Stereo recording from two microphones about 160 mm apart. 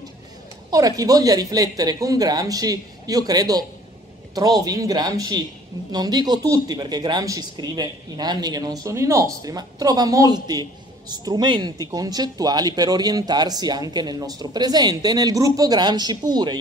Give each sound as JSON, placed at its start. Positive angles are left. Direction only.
{"t": 0.7, "sound": "speech", "side_deg": -20}